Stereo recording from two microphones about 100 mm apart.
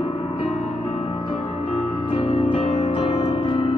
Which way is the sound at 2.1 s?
75° left (ahead or behind).